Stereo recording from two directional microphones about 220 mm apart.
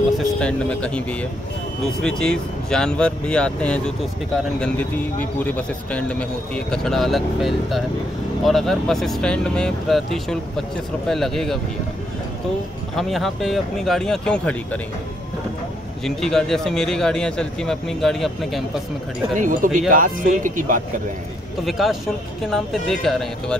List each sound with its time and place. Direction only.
0.4 s speech: 5° left (ahead or behind)
12.9 s speech: centre (ahead or behind)
16.0 s speech: centre (ahead or behind)
19.3 s speech: 35° right (ahead or behind)
21.6 s speech: centre (ahead or behind)